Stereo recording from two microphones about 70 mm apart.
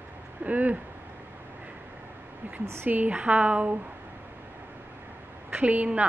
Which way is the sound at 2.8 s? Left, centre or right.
Right.